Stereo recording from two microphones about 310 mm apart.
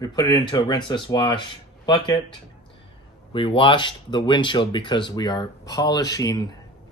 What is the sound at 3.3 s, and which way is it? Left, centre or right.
Speech, centre.